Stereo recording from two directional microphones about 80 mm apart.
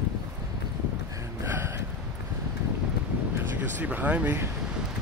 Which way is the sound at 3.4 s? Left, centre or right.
Right.